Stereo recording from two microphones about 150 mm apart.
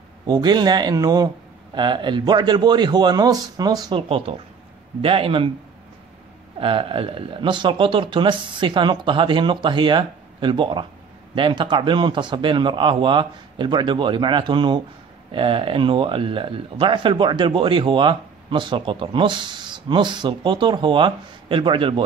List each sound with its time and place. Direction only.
0.3 s a man's voice: 30° right (ahead or behind)
4.3 s speech: 40° right (ahead or behind)
6.6 s speech: 35° right (ahead or behind)